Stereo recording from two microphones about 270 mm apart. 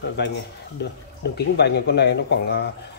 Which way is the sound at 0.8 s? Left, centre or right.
Left.